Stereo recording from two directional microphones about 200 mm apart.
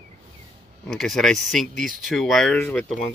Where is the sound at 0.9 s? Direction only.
Centre (ahead or behind).